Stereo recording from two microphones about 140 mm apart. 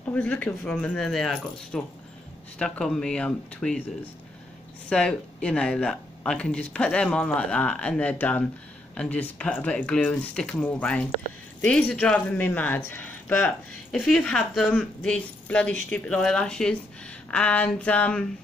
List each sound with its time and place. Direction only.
0.1 s speech: 10° left (ahead or behind)
4.8 s speech: 5° left (ahead or behind)